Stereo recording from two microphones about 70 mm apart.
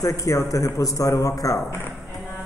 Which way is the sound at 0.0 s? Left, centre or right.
Left.